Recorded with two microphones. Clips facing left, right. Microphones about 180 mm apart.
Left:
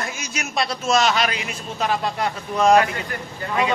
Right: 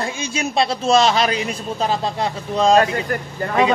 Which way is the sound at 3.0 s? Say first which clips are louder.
Right 5 dB; 45° right (ahead or behind).